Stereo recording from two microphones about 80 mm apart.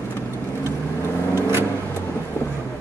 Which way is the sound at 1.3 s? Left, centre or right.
Right.